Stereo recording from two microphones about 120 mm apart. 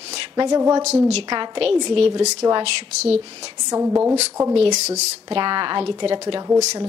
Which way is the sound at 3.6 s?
25° right (ahead or behind).